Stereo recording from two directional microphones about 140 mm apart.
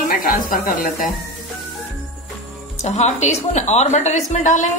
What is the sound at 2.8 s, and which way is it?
A woman's voice, 55° left (ahead or behind).